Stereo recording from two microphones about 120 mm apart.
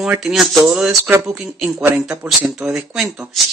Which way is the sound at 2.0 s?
5° right (ahead or behind).